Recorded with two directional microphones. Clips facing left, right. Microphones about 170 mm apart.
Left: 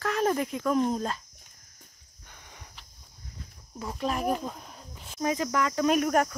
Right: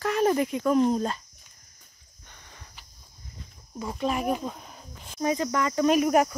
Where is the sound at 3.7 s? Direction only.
Centre (ahead or behind).